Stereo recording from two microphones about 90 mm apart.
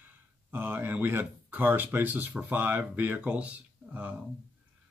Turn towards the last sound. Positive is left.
turn(degrees=-15)  # may be behind; listen again after turning